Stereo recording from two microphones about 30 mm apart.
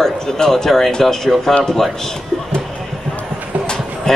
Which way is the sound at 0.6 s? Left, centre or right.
Centre.